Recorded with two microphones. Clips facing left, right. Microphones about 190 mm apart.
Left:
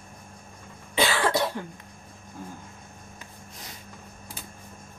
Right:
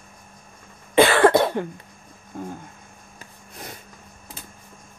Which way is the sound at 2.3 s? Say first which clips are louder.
Right 7 dB; 55° right (ahead or behind).